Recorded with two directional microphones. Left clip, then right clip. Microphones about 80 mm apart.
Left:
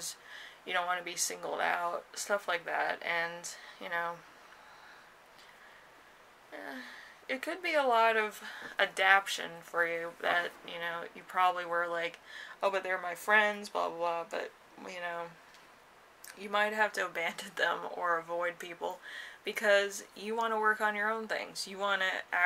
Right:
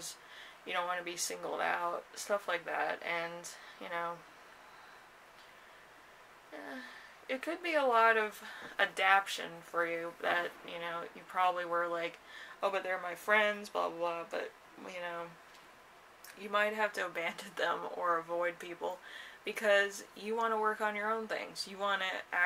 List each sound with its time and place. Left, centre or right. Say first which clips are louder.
0.0 s speech: left 3 dB; left
6.5 s speech: left 2 dB; left
16.3 s speech: left 2 dB; left